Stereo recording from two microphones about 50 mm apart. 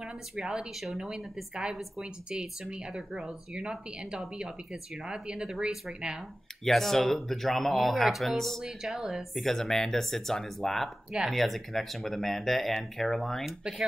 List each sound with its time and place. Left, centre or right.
0.4 s speech: centre
6.6 s speech: centre
8.6 s speech: centre
9.4 s speech: centre
13.5 s speech: centre